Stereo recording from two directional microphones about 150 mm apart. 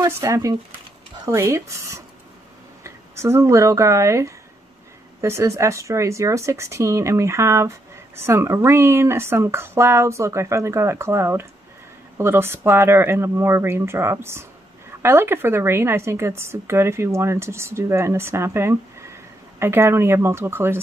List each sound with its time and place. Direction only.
0.0 s speech: 20° right (ahead or behind)